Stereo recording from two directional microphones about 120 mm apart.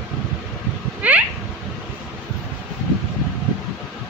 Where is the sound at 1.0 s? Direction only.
10° right (ahead or behind).